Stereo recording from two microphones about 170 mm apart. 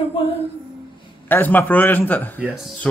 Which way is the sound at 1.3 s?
10° left (ahead or behind).